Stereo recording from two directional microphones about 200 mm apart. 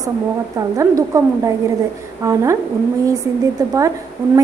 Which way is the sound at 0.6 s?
15° right (ahead or behind).